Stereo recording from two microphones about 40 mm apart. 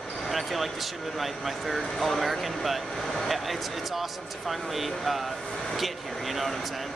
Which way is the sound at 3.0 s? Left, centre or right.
Centre.